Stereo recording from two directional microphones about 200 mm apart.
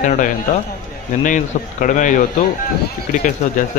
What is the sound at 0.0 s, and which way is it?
A man's voice, 35° left (ahead or behind).